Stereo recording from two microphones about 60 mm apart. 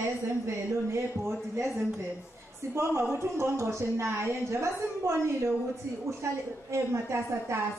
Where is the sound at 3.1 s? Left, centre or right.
Right.